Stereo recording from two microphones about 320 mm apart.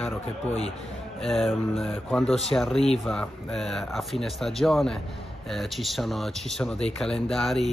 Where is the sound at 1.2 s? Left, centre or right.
Centre.